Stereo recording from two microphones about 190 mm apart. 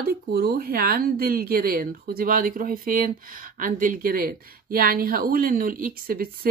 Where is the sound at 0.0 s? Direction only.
55° right (ahead or behind).